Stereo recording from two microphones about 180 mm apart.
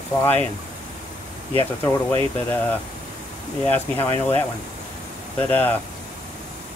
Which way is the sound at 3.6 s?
10° left (ahead or behind).